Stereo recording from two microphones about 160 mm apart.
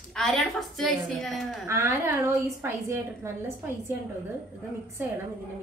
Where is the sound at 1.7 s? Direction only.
20° right (ahead or behind).